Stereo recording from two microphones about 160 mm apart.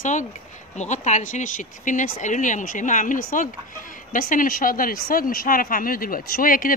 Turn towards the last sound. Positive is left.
turn(degrees=60)  # may be behind; listen again after turning